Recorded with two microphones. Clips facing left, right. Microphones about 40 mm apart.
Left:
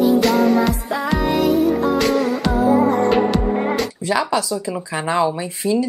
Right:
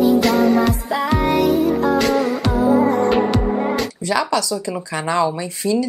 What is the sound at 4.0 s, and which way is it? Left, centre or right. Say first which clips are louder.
Speech: right 1 dB; centre.